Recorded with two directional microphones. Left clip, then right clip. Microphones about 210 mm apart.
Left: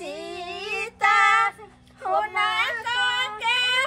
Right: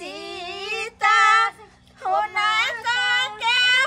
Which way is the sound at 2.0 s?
10° right (ahead or behind).